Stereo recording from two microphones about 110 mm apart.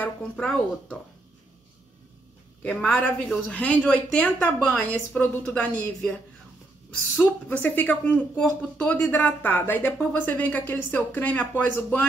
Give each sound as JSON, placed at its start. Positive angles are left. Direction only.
{"t": 0.0, "sound": "speech", "side_deg": 5}
{"t": 2.6, "sound": "speech", "side_deg": 10}
{"t": 7.4, "sound": "speech", "side_deg": 15}